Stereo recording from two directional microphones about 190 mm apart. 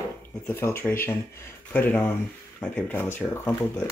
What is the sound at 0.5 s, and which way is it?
Speech, 10° left (ahead or behind).